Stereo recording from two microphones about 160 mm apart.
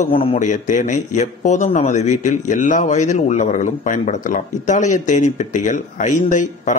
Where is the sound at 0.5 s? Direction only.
55° left (ahead or behind).